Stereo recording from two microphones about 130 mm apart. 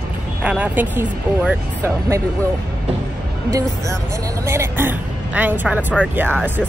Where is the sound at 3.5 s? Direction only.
25° right (ahead or behind).